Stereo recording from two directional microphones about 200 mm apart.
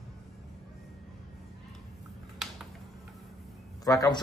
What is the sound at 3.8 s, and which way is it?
Speech, 15° left (ahead or behind).